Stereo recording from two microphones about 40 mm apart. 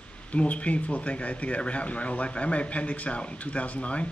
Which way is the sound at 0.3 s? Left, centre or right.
Left.